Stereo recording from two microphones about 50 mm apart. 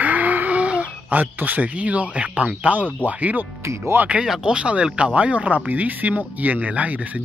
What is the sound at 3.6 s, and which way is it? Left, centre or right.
Speech, right.